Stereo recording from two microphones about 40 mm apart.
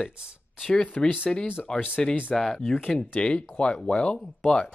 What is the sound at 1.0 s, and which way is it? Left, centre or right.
Speech, left.